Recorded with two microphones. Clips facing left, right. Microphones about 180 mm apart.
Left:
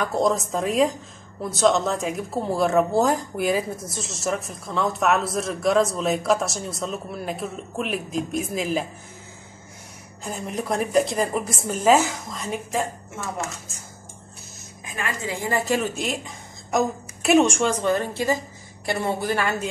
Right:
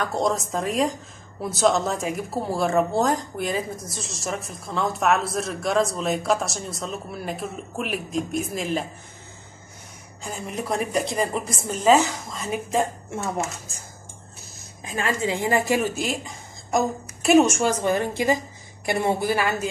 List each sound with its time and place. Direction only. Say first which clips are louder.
0.0 s a woman's voice: left 2 dB; centre (ahead or behind)
10.2 s a woman's voice: left 2 dB; centre (ahead or behind)
14.9 s a woman's voice: right 5 dB; 30° right (ahead or behind); by 15.9 s 15° right (ahead or behind)
16.0 s a woman's voice: right 1 dB; centre (ahead or behind)